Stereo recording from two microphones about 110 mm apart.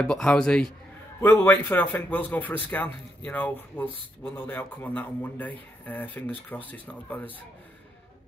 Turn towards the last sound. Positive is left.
turn(degrees=15)  # may be behind; listen again after turning